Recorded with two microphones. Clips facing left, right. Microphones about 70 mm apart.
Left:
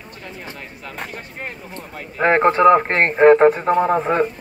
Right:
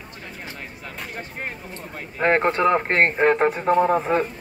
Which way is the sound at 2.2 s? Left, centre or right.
Centre.